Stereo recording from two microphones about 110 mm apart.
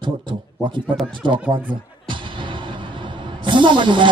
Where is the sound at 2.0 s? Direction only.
50° right (ahead or behind).